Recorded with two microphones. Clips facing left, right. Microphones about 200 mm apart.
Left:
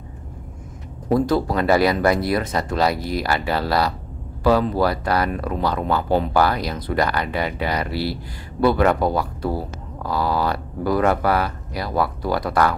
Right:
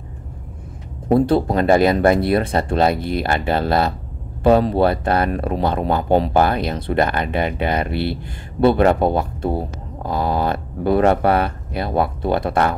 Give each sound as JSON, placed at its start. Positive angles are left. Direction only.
{"t": 1.0, "sound": "speech", "side_deg": -25}